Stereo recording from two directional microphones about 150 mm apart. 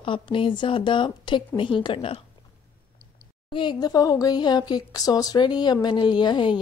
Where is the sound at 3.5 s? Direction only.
30° left (ahead or behind).